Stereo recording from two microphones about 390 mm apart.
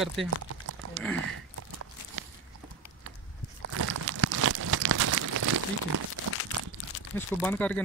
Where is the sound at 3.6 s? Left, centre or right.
Right.